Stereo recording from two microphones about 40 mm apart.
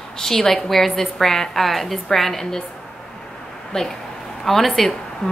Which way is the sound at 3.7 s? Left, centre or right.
Centre.